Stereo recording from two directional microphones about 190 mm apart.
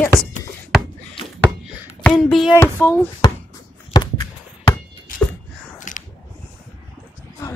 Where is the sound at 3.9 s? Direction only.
20° left (ahead or behind).